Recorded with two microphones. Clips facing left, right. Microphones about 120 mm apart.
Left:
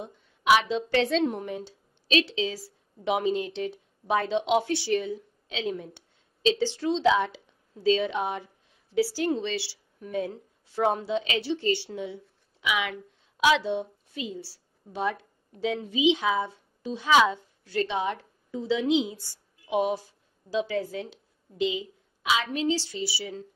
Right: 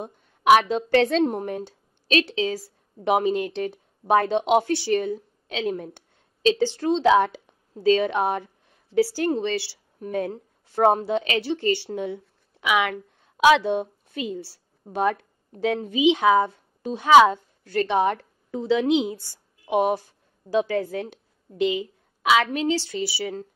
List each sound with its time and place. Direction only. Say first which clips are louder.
0.0 s a woman's voice: right 6 dB; 50° right (ahead or behind)